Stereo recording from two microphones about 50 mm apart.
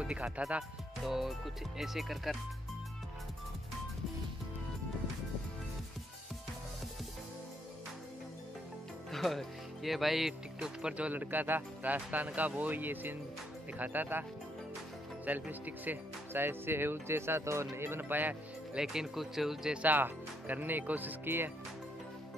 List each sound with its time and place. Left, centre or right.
0.0 s speech: centre
9.1 s speech: centre
10.6 s speech: centre
11.1 s speech: right
15.2 s speech: right
18.8 s speech: centre
19.8 s speech: right